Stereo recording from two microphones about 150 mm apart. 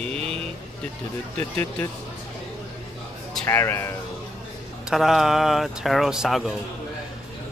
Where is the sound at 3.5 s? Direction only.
15° left (ahead or behind).